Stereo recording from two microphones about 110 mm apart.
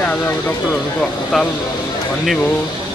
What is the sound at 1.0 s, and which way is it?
Speech, 5° left (ahead or behind).